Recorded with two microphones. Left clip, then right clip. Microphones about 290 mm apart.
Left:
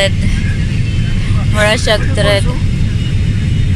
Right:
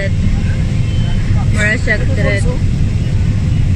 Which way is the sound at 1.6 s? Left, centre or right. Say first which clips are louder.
Left 3 dB; left.